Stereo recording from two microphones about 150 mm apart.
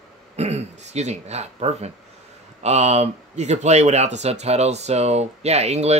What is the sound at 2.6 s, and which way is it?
Speech, 45° right (ahead or behind).